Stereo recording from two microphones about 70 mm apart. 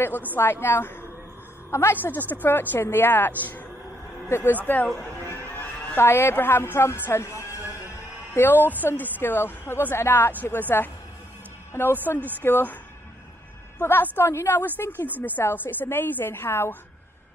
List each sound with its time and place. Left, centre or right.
0.4 s a woman's voice: left
5.3 s a sound: left
6.0 s a woman's voice: left
8.4 s a woman's voice: left
12.0 s speech: left
13.7 s a woman's voice: left